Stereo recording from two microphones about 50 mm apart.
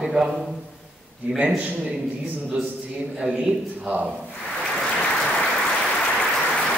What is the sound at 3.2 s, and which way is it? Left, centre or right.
Speech, centre.